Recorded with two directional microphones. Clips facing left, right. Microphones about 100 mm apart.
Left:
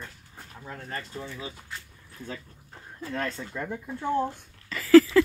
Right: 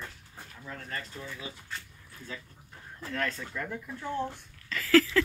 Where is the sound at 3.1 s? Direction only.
25° left (ahead or behind).